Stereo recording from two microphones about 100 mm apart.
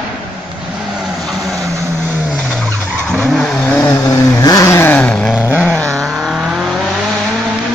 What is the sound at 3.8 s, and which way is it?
Vehicle, 40° left (ahead or behind).